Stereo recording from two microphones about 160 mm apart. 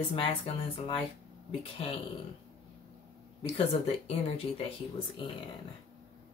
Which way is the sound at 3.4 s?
35° left (ahead or behind).